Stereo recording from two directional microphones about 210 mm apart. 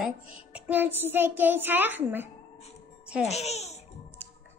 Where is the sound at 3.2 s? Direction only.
30° left (ahead or behind).